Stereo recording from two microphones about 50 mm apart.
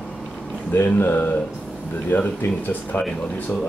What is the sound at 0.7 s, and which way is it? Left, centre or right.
Speech, left.